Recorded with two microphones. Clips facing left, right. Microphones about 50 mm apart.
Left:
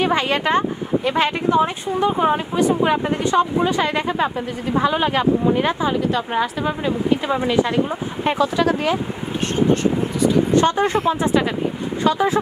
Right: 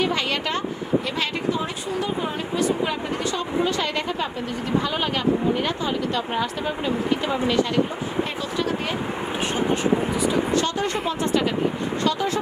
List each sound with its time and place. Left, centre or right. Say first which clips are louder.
0.0 s speech: left 5 dB; left
10.5 s speech: left 6 dB; left
11.1 s speech: left 4 dB; centre